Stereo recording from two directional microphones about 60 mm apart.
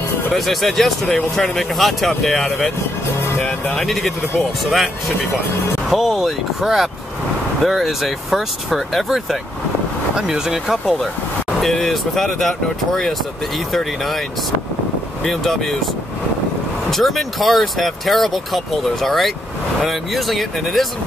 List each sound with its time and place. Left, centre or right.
0.5 s speech: centre
1.0 s speech: centre
1.4 s speech: centre
3.2 s speech: left
3.7 s speech: centre
15.2 s speech: centre
16.9 s speech: centre